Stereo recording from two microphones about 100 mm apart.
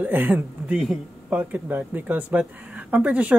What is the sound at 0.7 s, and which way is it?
Speech, 5° right (ahead or behind).